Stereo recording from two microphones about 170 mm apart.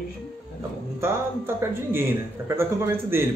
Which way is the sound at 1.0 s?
15° right (ahead or behind).